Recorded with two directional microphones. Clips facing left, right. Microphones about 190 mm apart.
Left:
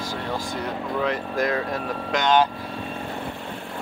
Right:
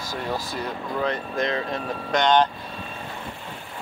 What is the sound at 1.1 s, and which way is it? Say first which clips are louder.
Speech: left 2 dB; 5° left (ahead or behind).